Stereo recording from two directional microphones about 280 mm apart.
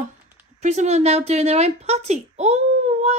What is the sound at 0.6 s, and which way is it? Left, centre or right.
Speech, right.